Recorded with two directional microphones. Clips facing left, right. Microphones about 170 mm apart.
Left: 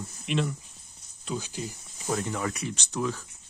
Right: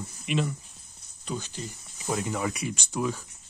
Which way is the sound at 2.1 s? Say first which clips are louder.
Right 1 dB; 10° right (ahead or behind).